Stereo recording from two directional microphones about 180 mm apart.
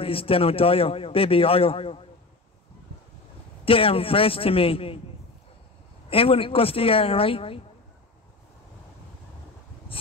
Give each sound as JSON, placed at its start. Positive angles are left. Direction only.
{"t": 0.0, "sound": "a man's voice", "side_deg": 30}
{"t": 3.6, "sound": "a man's voice", "side_deg": 30}
{"t": 6.0, "sound": "a man's voice", "side_deg": 30}